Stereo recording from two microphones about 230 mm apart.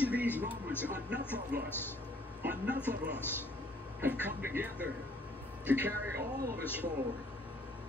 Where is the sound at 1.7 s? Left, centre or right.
Centre.